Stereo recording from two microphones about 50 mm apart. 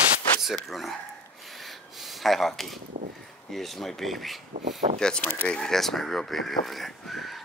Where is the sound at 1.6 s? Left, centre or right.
Centre.